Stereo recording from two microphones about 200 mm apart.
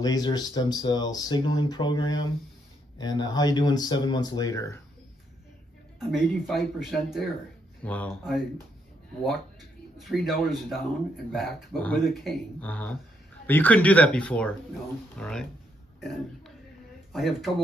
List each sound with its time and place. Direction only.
0.0 s speech: 20° left (ahead or behind)
5.9 s speech: centre (ahead or behind)
9.9 s speech: centre (ahead or behind)